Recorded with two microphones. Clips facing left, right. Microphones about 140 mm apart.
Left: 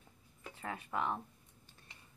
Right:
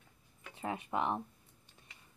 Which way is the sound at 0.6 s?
20° right (ahead or behind).